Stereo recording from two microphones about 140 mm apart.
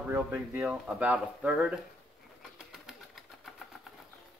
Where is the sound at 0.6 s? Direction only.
5° right (ahead or behind).